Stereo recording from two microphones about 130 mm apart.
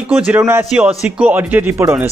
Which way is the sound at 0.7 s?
5° right (ahead or behind).